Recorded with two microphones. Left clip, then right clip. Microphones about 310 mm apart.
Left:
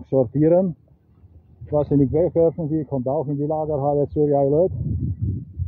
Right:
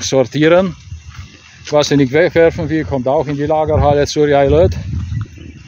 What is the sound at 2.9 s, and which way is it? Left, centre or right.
Speech, right.